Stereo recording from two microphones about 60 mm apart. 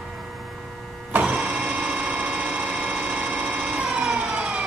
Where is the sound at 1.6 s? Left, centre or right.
Centre.